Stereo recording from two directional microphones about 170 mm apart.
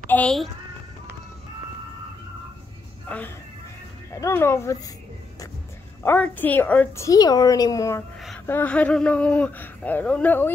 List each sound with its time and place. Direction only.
0.1 s a child's voice: 5° left (ahead or behind)
3.1 s speech: 10° left (ahead or behind)
6.0 s speech: 10° left (ahead or behind)